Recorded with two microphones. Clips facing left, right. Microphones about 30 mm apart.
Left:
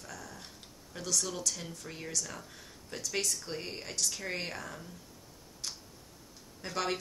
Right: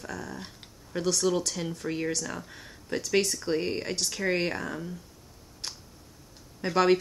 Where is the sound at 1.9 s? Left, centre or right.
Right.